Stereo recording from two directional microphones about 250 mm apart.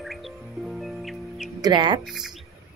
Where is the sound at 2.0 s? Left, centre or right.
Centre.